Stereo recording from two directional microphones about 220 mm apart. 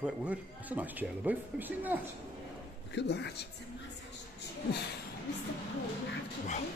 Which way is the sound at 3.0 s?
50° left (ahead or behind).